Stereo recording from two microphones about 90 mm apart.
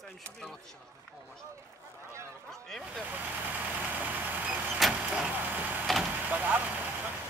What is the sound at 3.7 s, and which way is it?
Vehicle, 20° right (ahead or behind).